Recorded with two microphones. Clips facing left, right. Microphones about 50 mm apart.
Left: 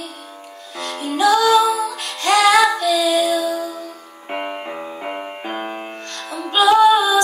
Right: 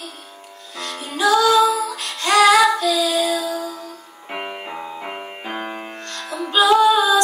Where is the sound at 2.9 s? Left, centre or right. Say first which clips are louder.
Left 2 dB; left.